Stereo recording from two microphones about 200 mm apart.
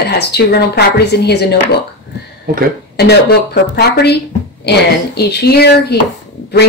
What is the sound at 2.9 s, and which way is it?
Speech, 55° left (ahead or behind).